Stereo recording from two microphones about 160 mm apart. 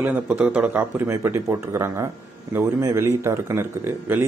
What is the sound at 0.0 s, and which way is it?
Speech, 10° right (ahead or behind).